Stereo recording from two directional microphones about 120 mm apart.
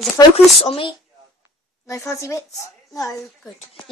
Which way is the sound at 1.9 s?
25° left (ahead or behind).